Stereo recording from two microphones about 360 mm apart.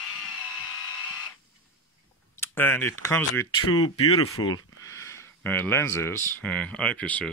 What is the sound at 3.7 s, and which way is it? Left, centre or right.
Speech, left.